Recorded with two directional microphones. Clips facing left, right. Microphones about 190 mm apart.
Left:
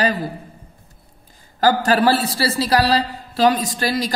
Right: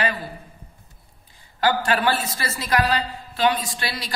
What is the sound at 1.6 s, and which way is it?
A woman's voice, 40° left (ahead or behind).